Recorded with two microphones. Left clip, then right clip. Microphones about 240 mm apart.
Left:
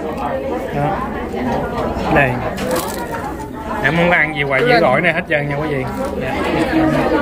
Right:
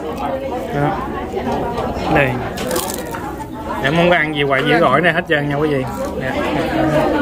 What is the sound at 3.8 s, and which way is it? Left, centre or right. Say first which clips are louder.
Speech: even; centre.